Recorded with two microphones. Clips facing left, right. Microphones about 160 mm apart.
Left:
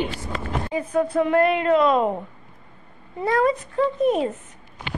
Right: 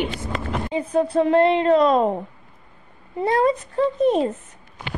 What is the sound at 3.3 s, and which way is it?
A woman's voice, 30° right (ahead or behind).